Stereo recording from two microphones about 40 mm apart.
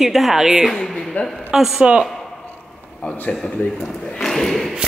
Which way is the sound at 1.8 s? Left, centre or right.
Right.